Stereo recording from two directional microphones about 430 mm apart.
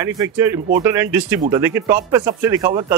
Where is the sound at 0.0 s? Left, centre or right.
Centre.